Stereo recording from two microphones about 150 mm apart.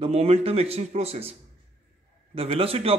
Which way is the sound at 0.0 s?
45° right (ahead or behind).